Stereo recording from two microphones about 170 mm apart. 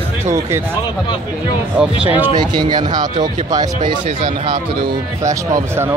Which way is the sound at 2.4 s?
25° right (ahead or behind).